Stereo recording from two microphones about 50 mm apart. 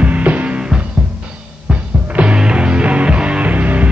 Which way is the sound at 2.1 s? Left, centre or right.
Right.